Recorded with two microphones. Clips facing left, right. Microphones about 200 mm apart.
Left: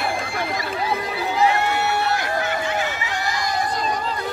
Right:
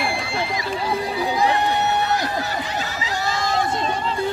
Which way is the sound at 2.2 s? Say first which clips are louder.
Left 1 dB; 40° right (ahead or behind).